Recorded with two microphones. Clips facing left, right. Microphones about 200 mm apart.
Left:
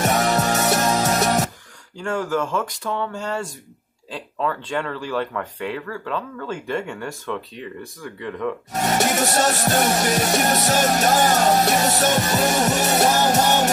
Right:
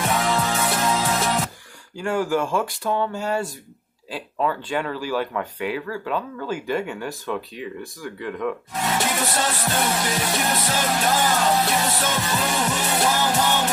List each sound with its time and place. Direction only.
0.0 s music: 45° left (ahead or behind)
2.0 s speech: 5° right (ahead or behind)
8.7 s music: 45° left (ahead or behind)